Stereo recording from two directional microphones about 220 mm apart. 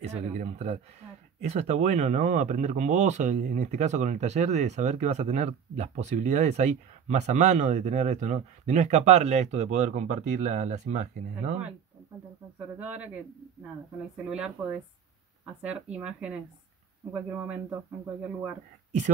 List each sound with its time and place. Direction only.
0.0 s speech: 30° right (ahead or behind)
12.5 s speech: 5° right (ahead or behind)
18.9 s speech: 35° right (ahead or behind)